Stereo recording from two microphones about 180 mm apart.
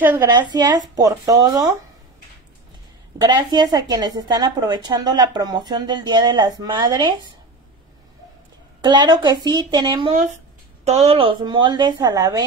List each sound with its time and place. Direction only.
0.0 s a woman's voice: 10° right (ahead or behind)
0.3 s a woman's voice: 25° right (ahead or behind)
3.2 s a woman's voice: 25° right (ahead or behind)
8.8 s a woman's voice: 25° right (ahead or behind)
10.9 s a woman's voice: 35° right (ahead or behind); by 12.4 s 20° right (ahead or behind)